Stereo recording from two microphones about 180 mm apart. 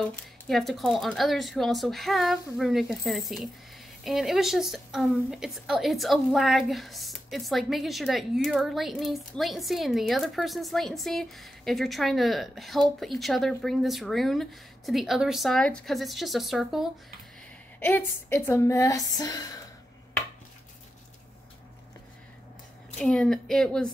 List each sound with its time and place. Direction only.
0.0 s a woman's voice: 5° left (ahead or behind)
17.7 s a woman's voice: 10° left (ahead or behind)
22.9 s a woman's voice: 5° left (ahead or behind)